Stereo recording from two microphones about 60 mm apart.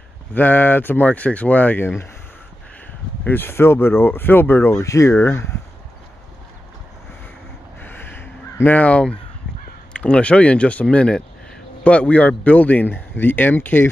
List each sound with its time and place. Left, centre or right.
0.3 s speech: left
3.3 s speech: left
4.8 s speech: left
7.8 s crow: left
8.7 s speech: left